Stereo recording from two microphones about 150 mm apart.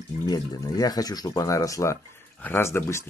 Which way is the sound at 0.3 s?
25° left (ahead or behind).